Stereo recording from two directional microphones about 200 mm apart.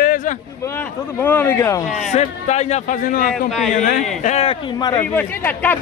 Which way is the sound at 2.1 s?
35° left (ahead or behind).